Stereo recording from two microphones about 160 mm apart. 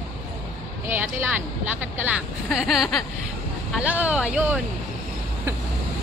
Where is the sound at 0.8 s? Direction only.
10° right (ahead or behind).